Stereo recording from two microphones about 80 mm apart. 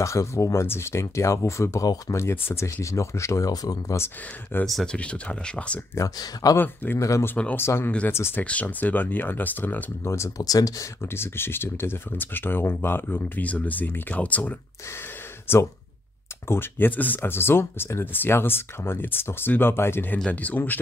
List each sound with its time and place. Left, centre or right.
0.0 s speech: left
3.9 s speech: left
4.9 s speech: centre
5.9 s speech: left
6.5 s speech: left
7.0 s speech: left
7.5 s speech: left
8.5 s speech: centre
10.1 s speech: left
11.1 s speech: left